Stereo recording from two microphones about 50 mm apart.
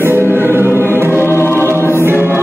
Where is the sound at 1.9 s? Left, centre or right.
Right.